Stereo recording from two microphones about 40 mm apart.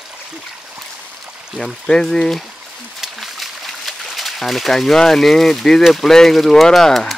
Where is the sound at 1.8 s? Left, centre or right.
Centre.